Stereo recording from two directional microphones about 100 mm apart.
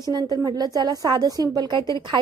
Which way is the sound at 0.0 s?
45° right (ahead or behind).